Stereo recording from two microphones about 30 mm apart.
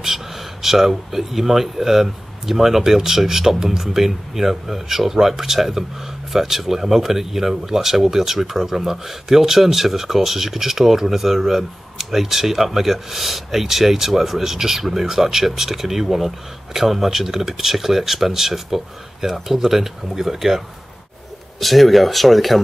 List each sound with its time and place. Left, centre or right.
0.0 s speech: centre
21.5 s speech: centre